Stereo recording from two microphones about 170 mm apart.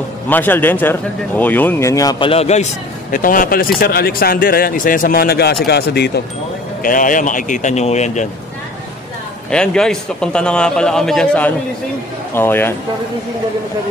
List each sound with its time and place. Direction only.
0.3 s speech: 10° left (ahead or behind); by 6.2 s 75° left (ahead or behind)
6.8 s speech: 50° left (ahead or behind)
9.5 s a man's voice: 5° left (ahead or behind)